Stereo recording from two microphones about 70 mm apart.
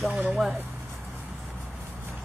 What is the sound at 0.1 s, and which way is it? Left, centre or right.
Speech, centre.